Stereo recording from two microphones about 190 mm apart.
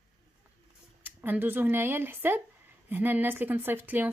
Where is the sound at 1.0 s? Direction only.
10° right (ahead or behind).